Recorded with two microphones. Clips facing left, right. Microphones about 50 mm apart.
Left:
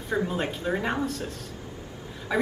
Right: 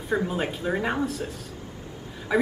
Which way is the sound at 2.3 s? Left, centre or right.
Centre.